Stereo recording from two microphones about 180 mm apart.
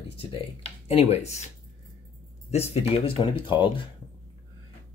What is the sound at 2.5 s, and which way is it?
Speech, 35° left (ahead or behind).